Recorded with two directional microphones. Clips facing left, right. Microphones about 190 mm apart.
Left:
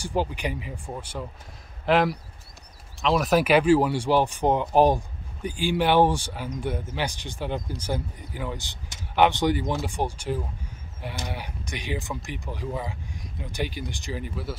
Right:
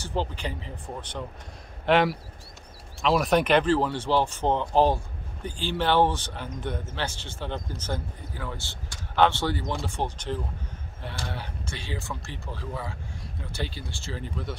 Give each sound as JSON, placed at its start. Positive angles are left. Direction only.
{"t": 0.0, "sound": "speech", "side_deg": 10}